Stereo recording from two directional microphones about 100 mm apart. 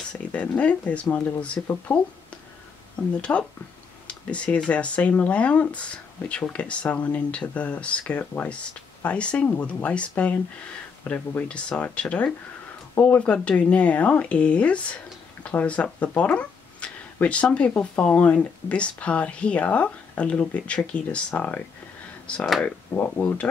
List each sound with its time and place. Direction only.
0.3 s speech: 15° left (ahead or behind)
3.2 s speech: 10° left (ahead or behind)